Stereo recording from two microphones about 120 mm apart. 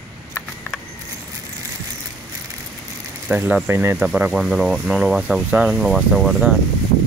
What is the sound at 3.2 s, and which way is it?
Speech, 10° right (ahead or behind).